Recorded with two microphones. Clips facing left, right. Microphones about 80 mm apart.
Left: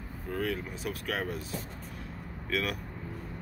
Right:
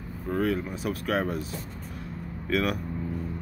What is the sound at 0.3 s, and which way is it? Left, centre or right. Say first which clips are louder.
Speech: right 6 dB; right.